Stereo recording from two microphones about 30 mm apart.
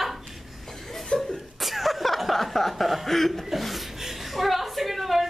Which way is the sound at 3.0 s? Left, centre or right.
Centre.